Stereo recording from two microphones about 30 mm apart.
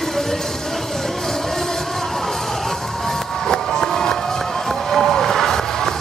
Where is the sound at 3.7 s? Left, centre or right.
Left.